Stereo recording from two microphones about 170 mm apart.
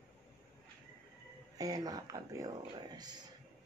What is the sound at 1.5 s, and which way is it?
Speech, 20° right (ahead or behind).